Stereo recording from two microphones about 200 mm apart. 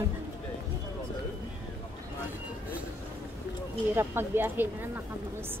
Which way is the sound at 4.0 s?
10° right (ahead or behind).